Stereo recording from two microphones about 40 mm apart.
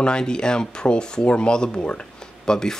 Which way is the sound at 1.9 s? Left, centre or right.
Left.